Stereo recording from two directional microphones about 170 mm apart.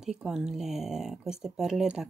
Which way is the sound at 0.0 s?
5° right (ahead or behind).